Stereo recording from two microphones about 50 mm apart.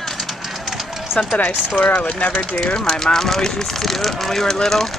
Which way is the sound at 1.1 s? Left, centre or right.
Left.